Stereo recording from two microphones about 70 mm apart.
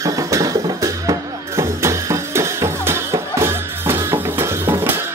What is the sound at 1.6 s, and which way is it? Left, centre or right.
Music, right.